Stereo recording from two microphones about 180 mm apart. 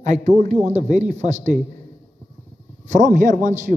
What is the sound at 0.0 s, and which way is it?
Speech, 40° right (ahead or behind).